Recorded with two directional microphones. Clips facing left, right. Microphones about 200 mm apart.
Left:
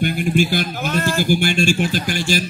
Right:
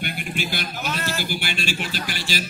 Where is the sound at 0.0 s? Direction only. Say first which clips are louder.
Left 11 dB; 40° left (ahead or behind).